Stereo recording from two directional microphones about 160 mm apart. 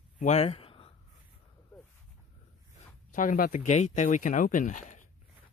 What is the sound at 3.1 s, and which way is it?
Speech, 55° left (ahead or behind).